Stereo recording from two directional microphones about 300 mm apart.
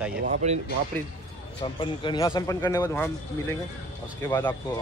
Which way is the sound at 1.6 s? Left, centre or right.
Centre.